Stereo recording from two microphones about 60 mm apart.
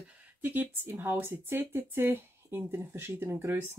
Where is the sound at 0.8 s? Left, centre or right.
Right.